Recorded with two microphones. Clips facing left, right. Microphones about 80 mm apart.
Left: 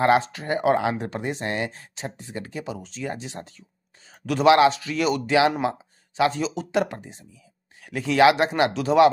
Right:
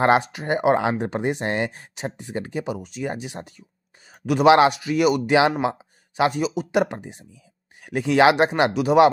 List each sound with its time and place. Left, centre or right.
0.0 s speech: right
4.1 s a sound: centre
4.5 s speech: right
4.7 s speech: centre
6.4 s speech: centre
6.8 s speech: right